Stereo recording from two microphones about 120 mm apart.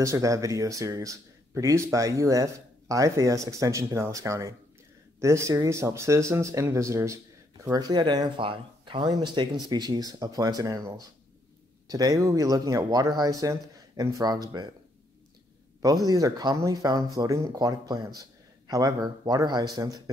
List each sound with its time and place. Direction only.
0.0 s speech: 25° right (ahead or behind)
15.8 s speech: 30° right (ahead or behind)